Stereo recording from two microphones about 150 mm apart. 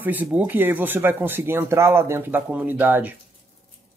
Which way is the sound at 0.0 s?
10° right (ahead or behind).